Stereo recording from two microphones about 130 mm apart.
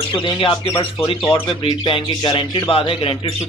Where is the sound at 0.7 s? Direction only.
15° left (ahead or behind).